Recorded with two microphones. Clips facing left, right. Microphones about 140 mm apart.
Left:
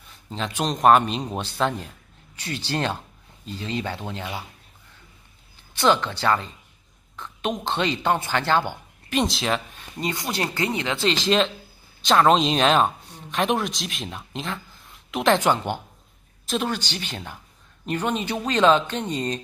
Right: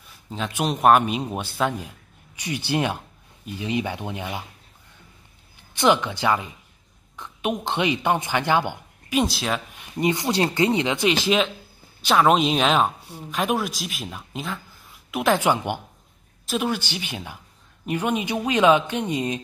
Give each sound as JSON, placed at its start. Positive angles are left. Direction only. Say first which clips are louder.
{"t": 0.3, "sound": "a man's voice", "louder": "right 1 dB", "side_deg": -5}
{"t": 5.8, "sound": "a man's voice", "louder": "right 1 dB", "side_deg": -15}
{"t": 9.2, "sound": "speech", "louder": "left 1 dB", "side_deg": -5}
{"t": 9.8, "sound": "a man's voice", "louder": "right 6 dB", "side_deg": -20}